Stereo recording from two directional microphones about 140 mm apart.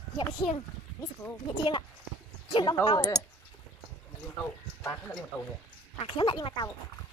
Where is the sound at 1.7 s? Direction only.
35° left (ahead or behind).